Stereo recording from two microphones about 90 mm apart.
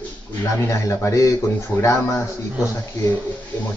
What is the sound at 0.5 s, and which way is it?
Speech, 30° left (ahead or behind).